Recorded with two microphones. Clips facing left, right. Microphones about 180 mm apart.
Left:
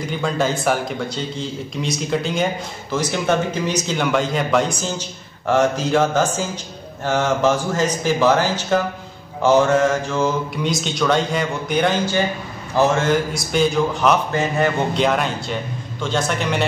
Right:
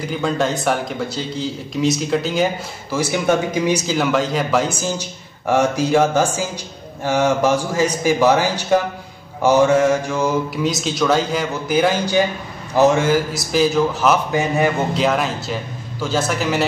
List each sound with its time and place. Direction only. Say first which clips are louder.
0.1 s speech: right 1 dB; centre (ahead or behind)
5.8 s speech: right 2 dB; 10° right (ahead or behind)
10.5 s speech: right 2 dB; centre (ahead or behind)
12.7 s speech: right 3 dB; 15° right (ahead or behind)
13.0 s speech: right 1 dB; 5° right (ahead or behind)